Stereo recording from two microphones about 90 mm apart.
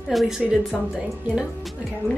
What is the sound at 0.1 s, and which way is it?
Speech, centre (ahead or behind).